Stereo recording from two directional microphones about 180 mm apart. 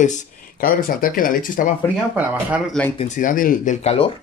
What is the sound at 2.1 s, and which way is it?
Speech, 10° right (ahead or behind).